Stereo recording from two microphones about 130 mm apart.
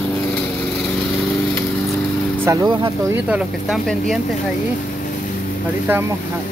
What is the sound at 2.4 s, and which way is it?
Speech, 25° right (ahead or behind).